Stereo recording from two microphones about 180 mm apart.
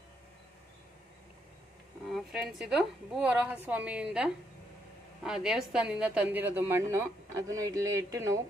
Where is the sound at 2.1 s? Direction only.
5° right (ahead or behind).